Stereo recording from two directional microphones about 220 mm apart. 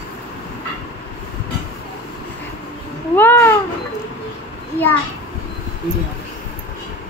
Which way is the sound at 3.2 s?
10° left (ahead or behind).